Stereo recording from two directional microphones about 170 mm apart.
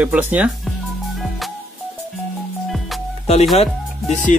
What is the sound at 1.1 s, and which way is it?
Music, centre (ahead or behind).